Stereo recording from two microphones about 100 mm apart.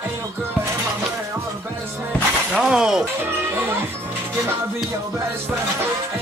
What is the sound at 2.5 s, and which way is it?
Speech, 5° right (ahead or behind).